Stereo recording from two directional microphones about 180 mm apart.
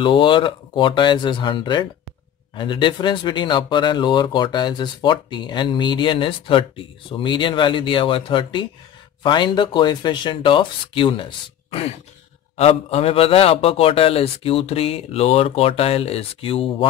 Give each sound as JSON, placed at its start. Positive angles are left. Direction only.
{"t": 0.0, "sound": "a man's voice", "side_deg": 25}